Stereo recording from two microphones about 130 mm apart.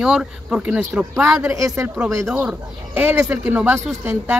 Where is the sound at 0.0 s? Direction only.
5° right (ahead or behind).